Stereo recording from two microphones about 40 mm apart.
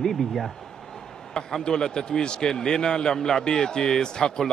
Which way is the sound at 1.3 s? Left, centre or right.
Centre.